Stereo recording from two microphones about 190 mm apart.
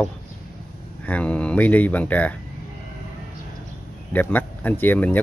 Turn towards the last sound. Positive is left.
turn(degrees=10)  # may be behind; listen again after turning